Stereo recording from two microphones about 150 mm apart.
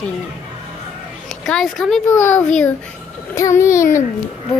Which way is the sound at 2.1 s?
15° left (ahead or behind).